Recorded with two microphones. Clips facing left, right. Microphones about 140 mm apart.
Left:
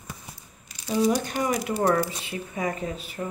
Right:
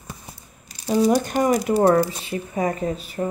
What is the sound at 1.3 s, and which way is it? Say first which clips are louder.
Speech: right 7 dB; 40° right (ahead or behind).